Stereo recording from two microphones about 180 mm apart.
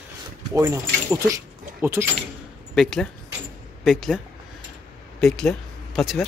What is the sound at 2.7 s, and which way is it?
A man's voice, 5° left (ahead or behind).